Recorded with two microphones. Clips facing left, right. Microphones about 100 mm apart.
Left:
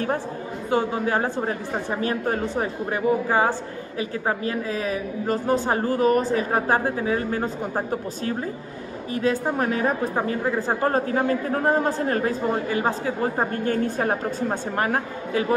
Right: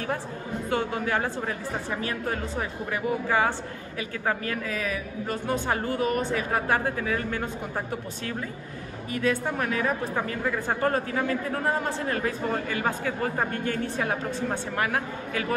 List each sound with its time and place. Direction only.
0.7 s a man's voice: 25° left (ahead or behind)